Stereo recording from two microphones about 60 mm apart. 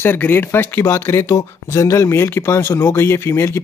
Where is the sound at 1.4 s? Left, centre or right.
Left.